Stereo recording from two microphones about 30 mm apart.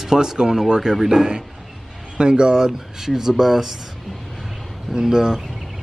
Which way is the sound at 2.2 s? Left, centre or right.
Right.